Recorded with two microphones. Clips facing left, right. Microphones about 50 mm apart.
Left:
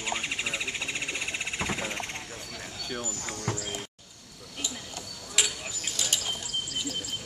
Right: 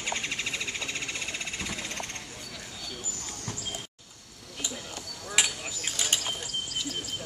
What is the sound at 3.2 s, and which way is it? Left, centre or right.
Clip-clop, left.